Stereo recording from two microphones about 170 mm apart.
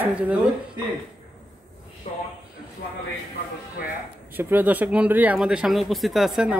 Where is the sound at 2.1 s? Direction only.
35° left (ahead or behind).